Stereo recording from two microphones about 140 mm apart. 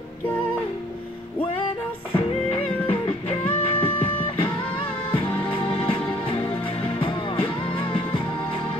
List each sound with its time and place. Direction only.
2.5 s music: 45° left (ahead or behind)